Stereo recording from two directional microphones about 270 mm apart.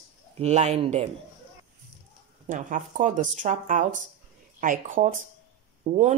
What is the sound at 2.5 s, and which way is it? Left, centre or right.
Speech, right.